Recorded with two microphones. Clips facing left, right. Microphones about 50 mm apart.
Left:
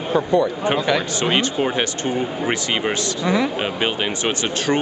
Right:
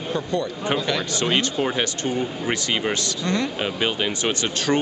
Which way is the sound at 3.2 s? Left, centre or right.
Centre.